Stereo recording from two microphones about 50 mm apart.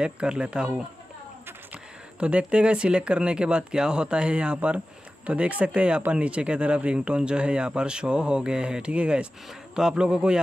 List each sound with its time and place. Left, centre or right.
0.0 s speech: right
1.7 s a man's voice: right